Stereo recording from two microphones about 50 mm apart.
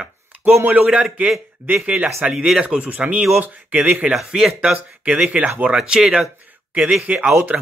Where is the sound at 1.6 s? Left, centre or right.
Right.